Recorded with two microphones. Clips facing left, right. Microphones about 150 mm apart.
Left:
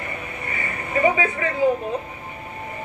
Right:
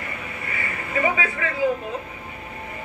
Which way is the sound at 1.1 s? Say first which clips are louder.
Left 3 dB; 20° left (ahead or behind).